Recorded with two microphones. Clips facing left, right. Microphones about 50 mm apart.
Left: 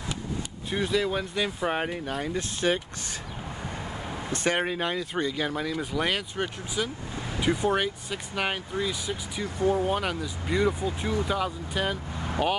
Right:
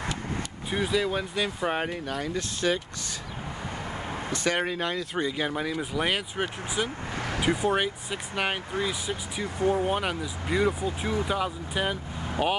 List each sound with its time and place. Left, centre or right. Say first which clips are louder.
0.7 s speech: even; centre
2.0 s speech: even; centre
4.6 s speech: even; centre
5.2 s speech: right 1 dB; centre
7.2 s vehicle: right 3 dB; right
7.4 s speech: left 1 dB; centre